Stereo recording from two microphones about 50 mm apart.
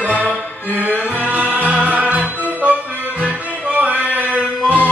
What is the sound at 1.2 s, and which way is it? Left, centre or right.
Music, right.